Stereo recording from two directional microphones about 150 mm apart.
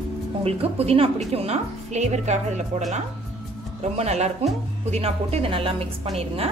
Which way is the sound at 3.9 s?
45° right (ahead or behind).